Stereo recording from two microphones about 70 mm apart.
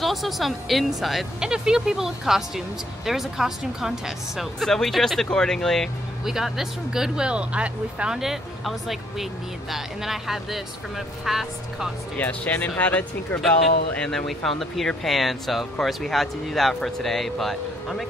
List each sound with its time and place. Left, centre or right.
0.0 s speech: centre
6.2 s speech: centre
12.2 s speech: left
13.4 s speech: centre